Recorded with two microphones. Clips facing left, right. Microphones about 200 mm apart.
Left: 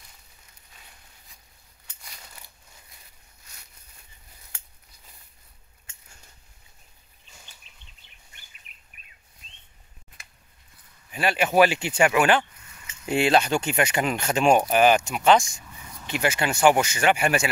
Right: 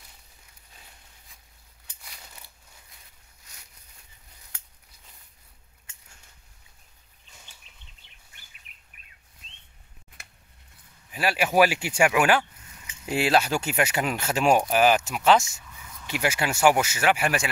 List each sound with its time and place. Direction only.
3.5 s a sound: 15° right (ahead or behind)
9.0 s bird: 20° left (ahead or behind)
11.1 s speech: 5° right (ahead or behind)